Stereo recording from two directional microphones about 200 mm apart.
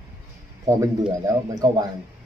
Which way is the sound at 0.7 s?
20° right (ahead or behind).